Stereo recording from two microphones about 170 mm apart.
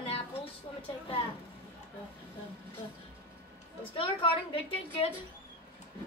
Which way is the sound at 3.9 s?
30° left (ahead or behind).